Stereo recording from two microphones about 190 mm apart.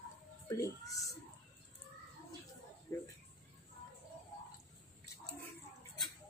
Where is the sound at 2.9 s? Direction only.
15° left (ahead or behind).